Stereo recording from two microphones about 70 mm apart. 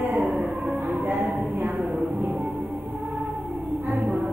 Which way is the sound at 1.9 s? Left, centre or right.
Centre.